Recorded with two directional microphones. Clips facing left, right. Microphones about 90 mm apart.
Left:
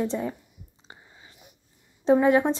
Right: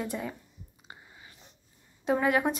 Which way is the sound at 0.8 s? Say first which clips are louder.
Even; 25° left (ahead or behind).